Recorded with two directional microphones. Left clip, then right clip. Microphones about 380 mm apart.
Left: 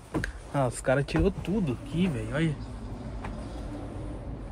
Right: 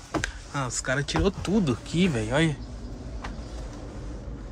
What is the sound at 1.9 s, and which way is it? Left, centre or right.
Speech, right.